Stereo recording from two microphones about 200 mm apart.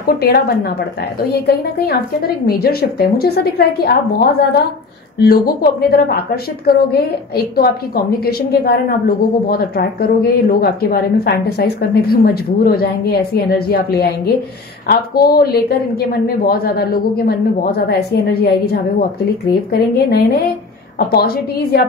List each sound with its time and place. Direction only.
0.0 s a woman's voice: 50° left (ahead or behind)